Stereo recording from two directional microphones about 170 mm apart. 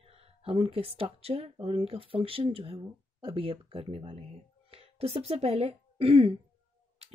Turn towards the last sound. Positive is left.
turn(degrees=-35)  # may be behind; listen again after turning